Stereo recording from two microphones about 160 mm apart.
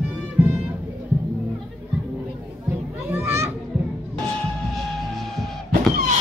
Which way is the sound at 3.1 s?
15° right (ahead or behind).